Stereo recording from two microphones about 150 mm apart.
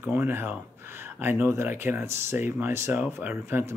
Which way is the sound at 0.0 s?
15° right (ahead or behind).